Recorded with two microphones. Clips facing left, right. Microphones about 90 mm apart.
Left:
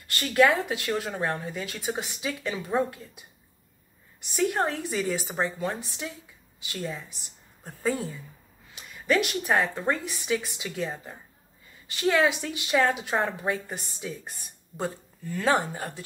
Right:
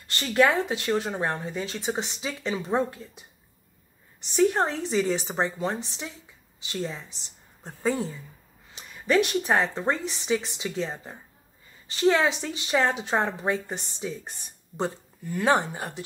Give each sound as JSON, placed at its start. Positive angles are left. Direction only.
{"t": 0.0, "sound": "a woman's voice", "side_deg": -25}
{"t": 4.2, "sound": "a woman's voice", "side_deg": -30}
{"t": 15.2, "sound": "a woman's voice", "side_deg": -20}